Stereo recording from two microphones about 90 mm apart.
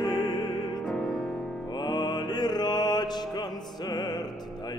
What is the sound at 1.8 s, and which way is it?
Mantra, 50° left (ahead or behind).